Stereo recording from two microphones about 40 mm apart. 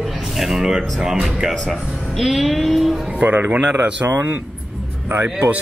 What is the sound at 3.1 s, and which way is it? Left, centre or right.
Speech, right.